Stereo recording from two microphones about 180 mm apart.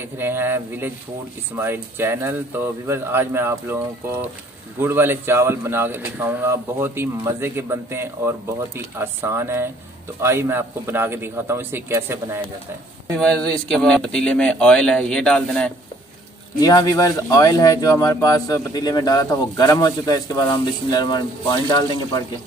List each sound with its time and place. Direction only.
0.2 s a man's voice: 10° right (ahead or behind)
4.7 s a man's voice: 10° right (ahead or behind)
13.1 s speech: 5° left (ahead or behind)
16.5 s speech: 20° left (ahead or behind)